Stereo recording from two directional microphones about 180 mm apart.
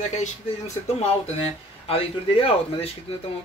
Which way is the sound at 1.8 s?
30° left (ahead or behind).